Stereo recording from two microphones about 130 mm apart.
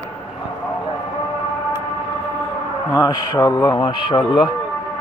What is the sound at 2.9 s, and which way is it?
Speech, 30° left (ahead or behind).